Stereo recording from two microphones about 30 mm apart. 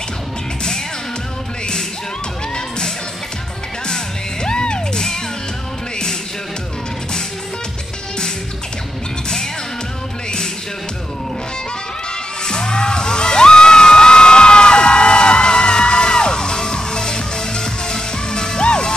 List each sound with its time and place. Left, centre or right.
3.8 s music: left
12.4 s music: left